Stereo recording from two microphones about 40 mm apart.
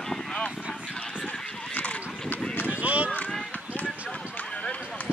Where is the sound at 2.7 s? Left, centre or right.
Right.